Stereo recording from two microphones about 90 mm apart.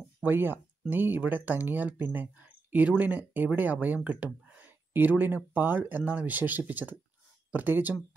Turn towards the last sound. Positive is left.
turn(degrees=-20)  # may be behind; listen again after turning